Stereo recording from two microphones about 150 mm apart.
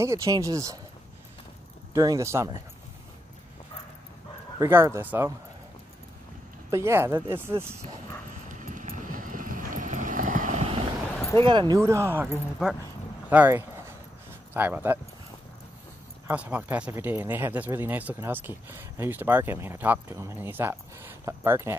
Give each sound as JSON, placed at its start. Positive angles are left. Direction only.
{"t": 0.0, "sound": "speech", "side_deg": -20}
{"t": 2.0, "sound": "speech", "side_deg": -20}
{"t": 4.6, "sound": "speech", "side_deg": -15}
{"t": 6.7, "sound": "speech", "side_deg": -15}
{"t": 8.5, "sound": "vehicle", "side_deg": -60}
{"t": 10.6, "sound": "vehicle", "side_deg": -40}
{"t": 11.1, "sound": "a sound", "side_deg": 20}
{"t": 11.4, "sound": "speech", "side_deg": -30}
{"t": 11.8, "sound": "speech", "side_deg": -20}
{"t": 16.3, "sound": "speech", "side_deg": -10}